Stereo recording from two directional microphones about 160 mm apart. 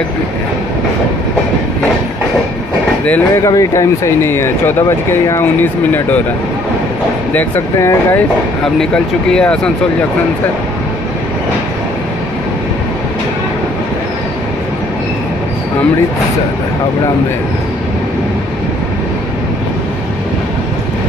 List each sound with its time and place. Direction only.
3.4 s speech: 20° left (ahead or behind)
7.3 s speech: 15° left (ahead or behind)